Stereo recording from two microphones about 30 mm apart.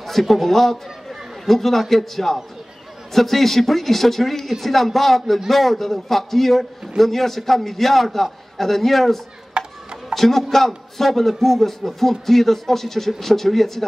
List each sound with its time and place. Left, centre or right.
0.0 s a man's voice: centre
9.5 s a sound: right
10.1 s speech: centre